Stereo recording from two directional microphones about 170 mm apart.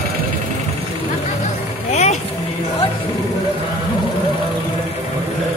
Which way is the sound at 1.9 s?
40° left (ahead or behind).